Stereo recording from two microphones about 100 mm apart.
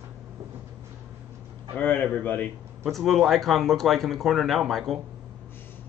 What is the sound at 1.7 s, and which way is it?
Speech, 15° left (ahead or behind).